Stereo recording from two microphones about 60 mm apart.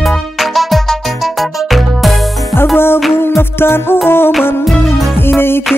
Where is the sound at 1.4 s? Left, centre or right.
Centre.